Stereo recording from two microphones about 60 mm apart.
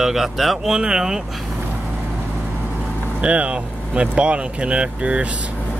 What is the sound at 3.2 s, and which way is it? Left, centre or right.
Speech, right.